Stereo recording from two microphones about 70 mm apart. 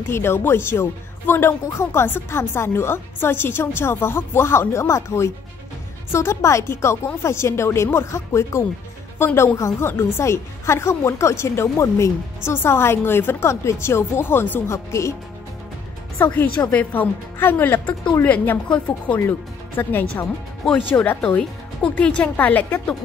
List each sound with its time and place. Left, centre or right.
0.0 s a woman's voice: left
14.7 s a woman's voice: left
16.2 s speech: left
18.7 s speech: centre
19.8 s speech: left